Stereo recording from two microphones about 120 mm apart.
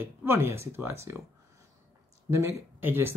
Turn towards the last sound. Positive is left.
turn(degrees=-20)  # may be behind; listen again after turning